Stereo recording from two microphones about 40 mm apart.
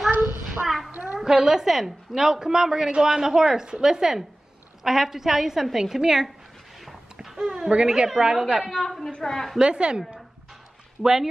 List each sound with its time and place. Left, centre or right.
0.2 s child singing: right
0.7 s a sound: centre
1.2 s a woman's voice: centre
6.8 s a sound: centre
7.3 s a woman's voice: centre
8.6 s a woman's voice: centre
9.6 s a woman's voice: right